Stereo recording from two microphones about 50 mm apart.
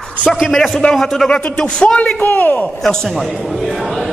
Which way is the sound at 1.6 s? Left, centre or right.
Centre.